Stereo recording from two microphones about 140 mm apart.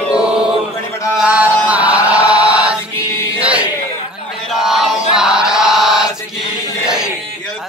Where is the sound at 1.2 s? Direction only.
10° right (ahead or behind).